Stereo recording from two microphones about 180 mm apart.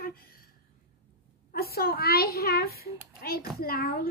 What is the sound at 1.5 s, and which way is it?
A child's voice, 60° left (ahead or behind).